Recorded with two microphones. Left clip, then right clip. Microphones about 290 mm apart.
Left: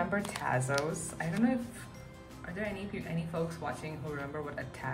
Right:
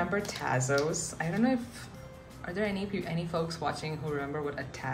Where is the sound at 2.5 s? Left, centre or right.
Centre.